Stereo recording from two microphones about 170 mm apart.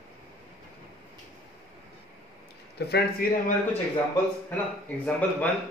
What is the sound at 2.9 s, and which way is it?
Speech, 60° left (ahead or behind).